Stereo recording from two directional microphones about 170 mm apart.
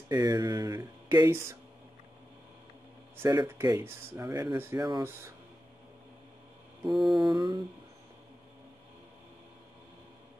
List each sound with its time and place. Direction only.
0.1 s speech: 20° right (ahead or behind)
3.2 s speech: 20° right (ahead or behind)
7.1 s speech: 25° right (ahead or behind)